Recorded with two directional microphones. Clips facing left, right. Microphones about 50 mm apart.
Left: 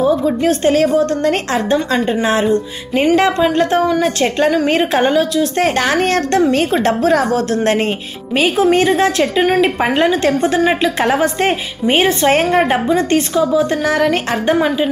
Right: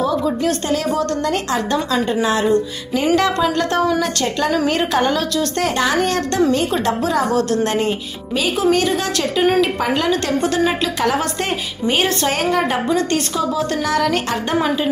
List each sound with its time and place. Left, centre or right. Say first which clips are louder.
0.0 s a woman's voice: left 4 dB; left
5.6 s a woman's voice: left 2 dB; left; by 14.9 s centre